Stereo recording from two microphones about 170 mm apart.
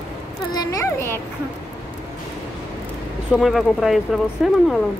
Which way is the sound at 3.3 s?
Centre (ahead or behind).